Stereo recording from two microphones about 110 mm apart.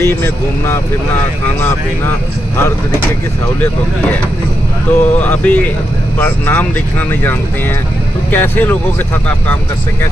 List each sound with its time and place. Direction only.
0.0 s speech: 20° left (ahead or behind)
4.9 s speech: 20° left (ahead or behind)